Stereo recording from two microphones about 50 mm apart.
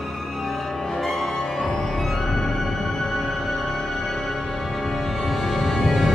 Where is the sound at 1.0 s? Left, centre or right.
Centre.